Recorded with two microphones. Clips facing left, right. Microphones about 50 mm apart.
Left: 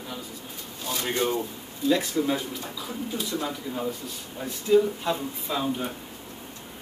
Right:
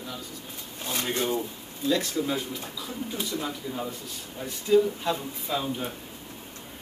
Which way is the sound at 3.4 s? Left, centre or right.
Centre.